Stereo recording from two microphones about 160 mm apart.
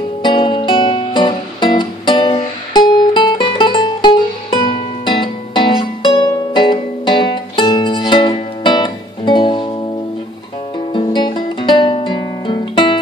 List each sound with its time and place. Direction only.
0.2 s music: 30° left (ahead or behind)
10.9 s guitar: 30° left (ahead or behind)